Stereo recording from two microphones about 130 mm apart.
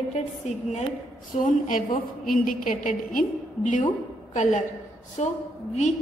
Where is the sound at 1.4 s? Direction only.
85° left.